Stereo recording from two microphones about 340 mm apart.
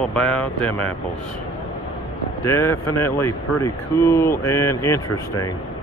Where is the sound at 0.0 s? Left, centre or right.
Centre.